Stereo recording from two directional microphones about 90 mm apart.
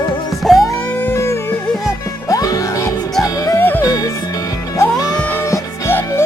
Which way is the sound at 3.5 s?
25° left (ahead or behind).